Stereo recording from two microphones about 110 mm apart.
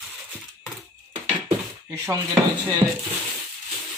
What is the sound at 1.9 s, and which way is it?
Speech, 25° right (ahead or behind).